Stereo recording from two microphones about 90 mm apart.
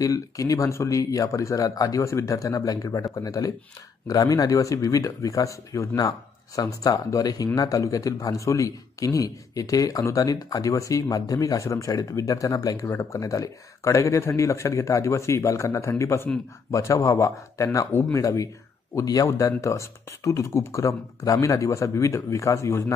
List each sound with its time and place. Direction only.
0.0 s a man's voice: 40° left (ahead or behind)